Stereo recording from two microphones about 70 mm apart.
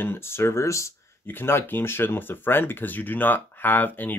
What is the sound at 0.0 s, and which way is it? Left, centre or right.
Speech, left.